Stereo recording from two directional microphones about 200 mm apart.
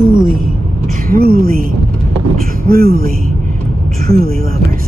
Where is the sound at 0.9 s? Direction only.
45° right (ahead or behind).